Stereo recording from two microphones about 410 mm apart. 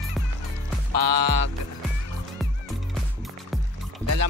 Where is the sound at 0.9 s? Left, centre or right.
Right.